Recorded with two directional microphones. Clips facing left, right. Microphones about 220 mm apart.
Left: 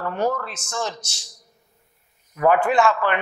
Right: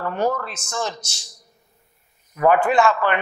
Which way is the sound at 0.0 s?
25° right (ahead or behind).